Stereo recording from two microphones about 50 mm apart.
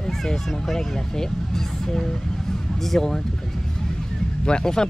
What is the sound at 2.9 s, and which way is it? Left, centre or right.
Speech, centre.